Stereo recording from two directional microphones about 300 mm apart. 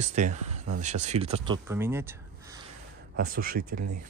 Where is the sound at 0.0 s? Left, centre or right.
Right.